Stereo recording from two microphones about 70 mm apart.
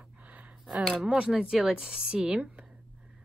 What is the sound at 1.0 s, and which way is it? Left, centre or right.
A woman's voice, centre.